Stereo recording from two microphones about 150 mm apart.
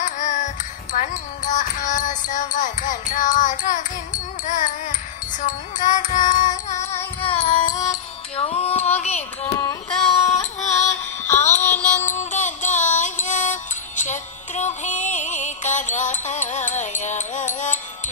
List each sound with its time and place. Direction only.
0.0 s music: 55° left (ahead or behind)
7.2 s music: 40° left (ahead or behind)
7.6 s music: 25° left (ahead or behind)
7.9 s music: 45° left (ahead or behind)
11.5 s music: 15° left (ahead or behind)
12.1 s music: 55° left (ahead or behind)